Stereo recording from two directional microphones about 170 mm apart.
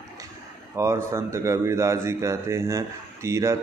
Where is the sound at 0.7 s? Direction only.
15° right (ahead or behind).